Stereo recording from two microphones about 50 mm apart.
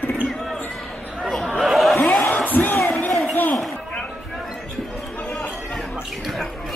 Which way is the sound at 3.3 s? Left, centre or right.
Left.